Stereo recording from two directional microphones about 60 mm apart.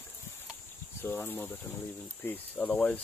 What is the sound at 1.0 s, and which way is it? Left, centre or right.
Speech, left.